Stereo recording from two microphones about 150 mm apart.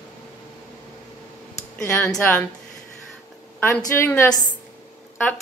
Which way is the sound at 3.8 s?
15° left (ahead or behind).